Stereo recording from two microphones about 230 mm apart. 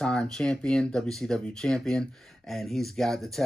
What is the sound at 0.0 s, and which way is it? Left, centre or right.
Speech, centre.